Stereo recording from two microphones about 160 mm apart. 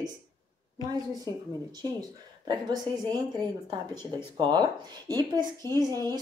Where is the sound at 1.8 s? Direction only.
25° right (ahead or behind).